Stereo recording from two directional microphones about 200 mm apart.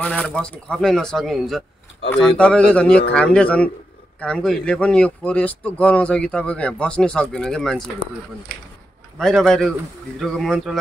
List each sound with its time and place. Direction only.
0.0 s speech: 5° left (ahead or behind)
9.2 s speech: 5° left (ahead or behind)